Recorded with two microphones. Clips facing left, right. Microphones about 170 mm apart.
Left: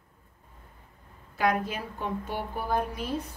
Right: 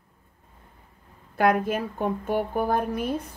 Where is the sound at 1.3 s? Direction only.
50° right (ahead or behind).